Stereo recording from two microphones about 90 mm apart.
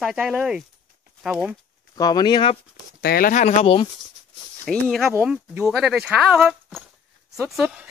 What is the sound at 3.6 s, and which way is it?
Speech, 90° left.